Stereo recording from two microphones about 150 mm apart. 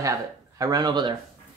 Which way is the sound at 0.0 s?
25° right (ahead or behind).